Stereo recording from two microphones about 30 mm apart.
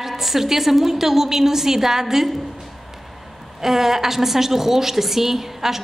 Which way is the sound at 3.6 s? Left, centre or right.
Centre.